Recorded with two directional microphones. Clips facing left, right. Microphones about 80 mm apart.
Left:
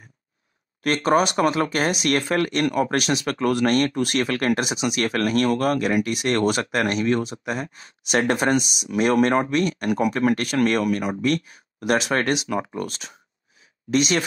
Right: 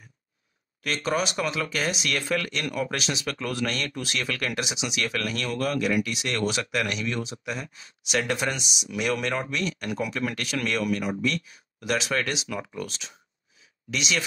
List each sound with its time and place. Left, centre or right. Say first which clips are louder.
0.8 s speech: left 8 dB; left